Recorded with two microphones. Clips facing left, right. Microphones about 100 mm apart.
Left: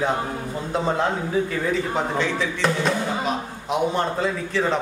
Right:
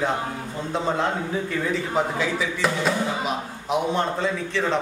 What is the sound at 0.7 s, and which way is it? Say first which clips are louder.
A man's voice: left 1 dB; centre (ahead or behind).